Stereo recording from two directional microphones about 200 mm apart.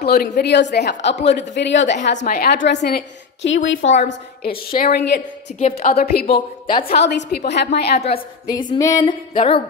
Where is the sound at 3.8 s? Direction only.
35° left (ahead or behind).